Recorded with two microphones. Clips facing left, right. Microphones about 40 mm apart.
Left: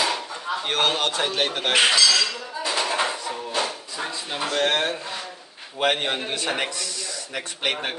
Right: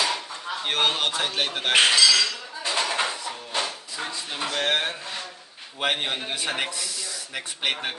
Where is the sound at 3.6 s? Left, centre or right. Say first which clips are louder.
Left 1 dB; centre.